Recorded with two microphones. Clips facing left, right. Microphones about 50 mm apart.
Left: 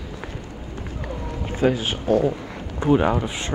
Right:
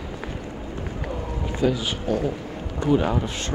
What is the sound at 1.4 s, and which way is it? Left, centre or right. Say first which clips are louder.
Speech: left 2 dB; left.